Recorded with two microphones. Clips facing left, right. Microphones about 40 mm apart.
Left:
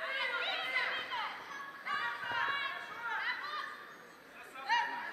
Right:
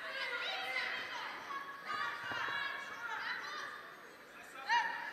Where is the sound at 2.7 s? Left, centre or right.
Centre.